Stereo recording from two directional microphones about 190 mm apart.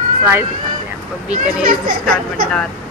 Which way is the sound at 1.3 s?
50° right (ahead or behind).